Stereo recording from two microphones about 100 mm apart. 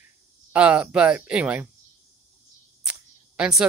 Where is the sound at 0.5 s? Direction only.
10° right (ahead or behind).